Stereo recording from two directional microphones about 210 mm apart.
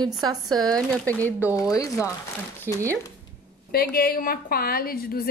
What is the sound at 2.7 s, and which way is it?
Speech, 10° right (ahead or behind).